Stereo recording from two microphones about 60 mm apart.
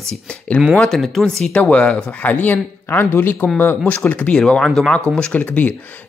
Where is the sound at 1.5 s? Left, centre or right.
Left.